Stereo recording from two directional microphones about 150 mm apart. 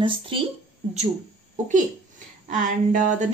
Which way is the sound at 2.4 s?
60° right (ahead or behind).